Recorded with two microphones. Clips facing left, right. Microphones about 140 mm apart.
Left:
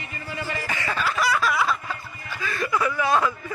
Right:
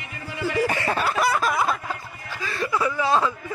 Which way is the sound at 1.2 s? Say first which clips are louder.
Left 1 dB; 50° right (ahead or behind).